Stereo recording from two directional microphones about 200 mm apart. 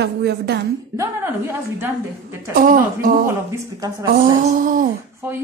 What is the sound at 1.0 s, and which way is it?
Speech, 10° right (ahead or behind).